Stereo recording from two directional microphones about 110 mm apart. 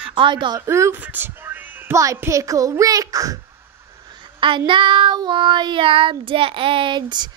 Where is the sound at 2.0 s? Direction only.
30° right (ahead or behind).